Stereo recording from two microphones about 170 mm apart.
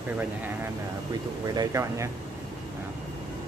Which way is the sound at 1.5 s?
20° right (ahead or behind).